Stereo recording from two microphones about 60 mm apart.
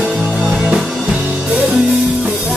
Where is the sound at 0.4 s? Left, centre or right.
Centre.